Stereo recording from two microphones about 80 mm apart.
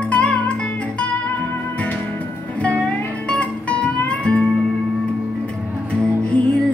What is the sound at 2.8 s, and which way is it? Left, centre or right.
Music, centre.